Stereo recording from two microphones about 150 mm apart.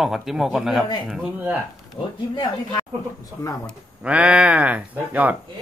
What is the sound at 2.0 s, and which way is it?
Speech, 30° left (ahead or behind).